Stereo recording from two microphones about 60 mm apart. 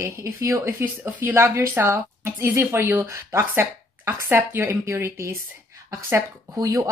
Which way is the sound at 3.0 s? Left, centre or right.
Right.